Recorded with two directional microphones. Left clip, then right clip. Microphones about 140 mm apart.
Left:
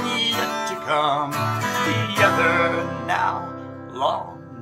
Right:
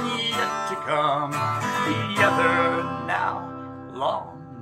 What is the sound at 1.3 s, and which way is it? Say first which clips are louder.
Music: left 1 dB; 25° left (ahead or behind).